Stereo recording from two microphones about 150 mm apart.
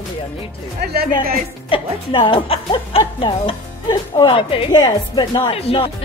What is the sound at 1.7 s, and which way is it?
Speech, 35° left (ahead or behind).